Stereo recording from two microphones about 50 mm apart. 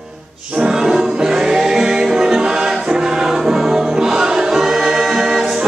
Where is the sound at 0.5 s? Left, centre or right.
Centre.